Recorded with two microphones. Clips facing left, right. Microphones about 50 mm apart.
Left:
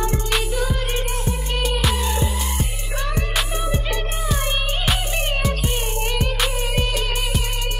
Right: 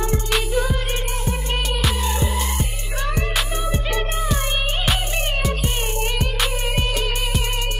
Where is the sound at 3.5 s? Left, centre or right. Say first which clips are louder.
Right 1 dB; centre.